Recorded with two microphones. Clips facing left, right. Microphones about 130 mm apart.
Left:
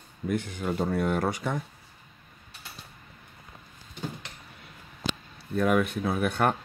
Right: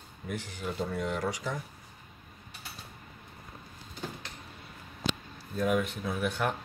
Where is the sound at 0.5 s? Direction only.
60° left (ahead or behind).